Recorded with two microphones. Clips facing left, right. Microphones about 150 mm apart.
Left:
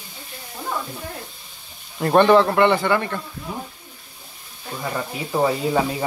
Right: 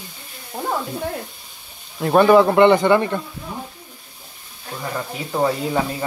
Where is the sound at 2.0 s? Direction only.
5° right (ahead or behind).